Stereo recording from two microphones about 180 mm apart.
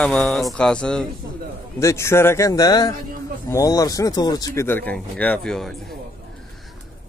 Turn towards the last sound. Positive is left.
turn(degrees=5)  # may be behind; listen again after turning